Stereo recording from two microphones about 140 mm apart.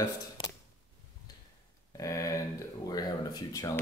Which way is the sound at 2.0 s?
20° left (ahead or behind).